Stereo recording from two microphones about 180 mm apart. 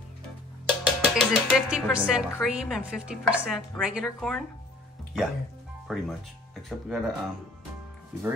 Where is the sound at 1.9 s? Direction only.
5° right (ahead or behind).